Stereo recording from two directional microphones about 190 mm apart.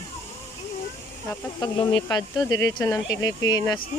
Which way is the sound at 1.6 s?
25° left (ahead or behind).